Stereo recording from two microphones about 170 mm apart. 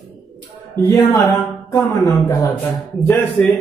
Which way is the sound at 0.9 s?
20° left (ahead or behind).